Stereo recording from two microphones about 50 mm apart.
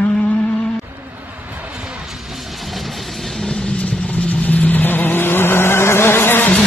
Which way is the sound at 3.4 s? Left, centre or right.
Centre.